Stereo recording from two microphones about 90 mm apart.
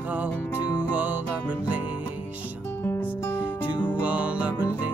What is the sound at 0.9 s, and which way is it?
Music, 15° right (ahead or behind).